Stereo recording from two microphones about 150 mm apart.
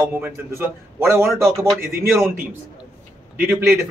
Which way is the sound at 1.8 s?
90° right.